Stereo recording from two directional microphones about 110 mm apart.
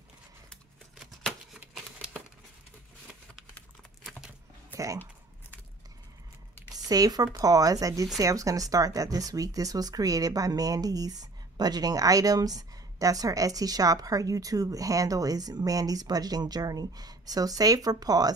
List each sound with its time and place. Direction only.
3.5 s typing: 10° left (ahead or behind)
6.7 s a sound: 35° right (ahead or behind)
7.3 s speech: 35° right (ahead or behind)